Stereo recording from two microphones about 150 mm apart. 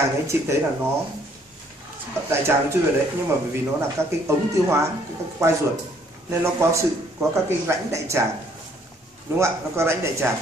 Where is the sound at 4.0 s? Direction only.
15° right (ahead or behind).